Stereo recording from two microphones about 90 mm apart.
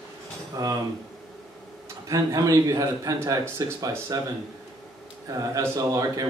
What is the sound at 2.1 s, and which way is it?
A man's voice, 40° right (ahead or behind).